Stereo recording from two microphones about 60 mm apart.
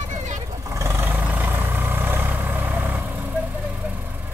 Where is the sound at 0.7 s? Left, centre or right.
Right.